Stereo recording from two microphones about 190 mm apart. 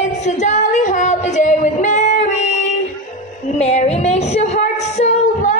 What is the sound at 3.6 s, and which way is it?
Singing, 35° left (ahead or behind).